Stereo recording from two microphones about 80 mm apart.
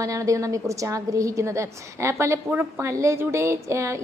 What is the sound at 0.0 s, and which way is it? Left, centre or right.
A woman's voice, right.